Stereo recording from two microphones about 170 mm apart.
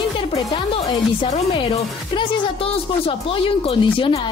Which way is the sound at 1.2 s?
30° left (ahead or behind).